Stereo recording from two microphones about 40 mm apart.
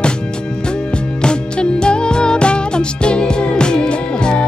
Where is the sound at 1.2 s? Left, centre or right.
Left.